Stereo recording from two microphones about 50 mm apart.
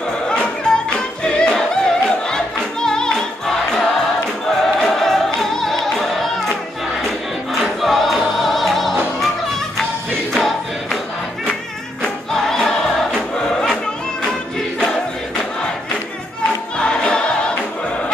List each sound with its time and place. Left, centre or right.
0.9 s music: centre
10.3 s choir: centre
12.0 s music: centre
16.7 s choir: centre